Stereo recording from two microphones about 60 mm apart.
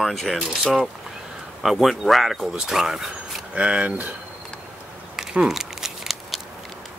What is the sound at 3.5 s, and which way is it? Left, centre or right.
Speech, right.